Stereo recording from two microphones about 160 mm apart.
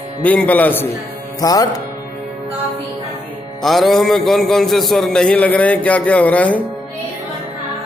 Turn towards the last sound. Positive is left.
turn(degrees=10)  # may be behind; listen again after turning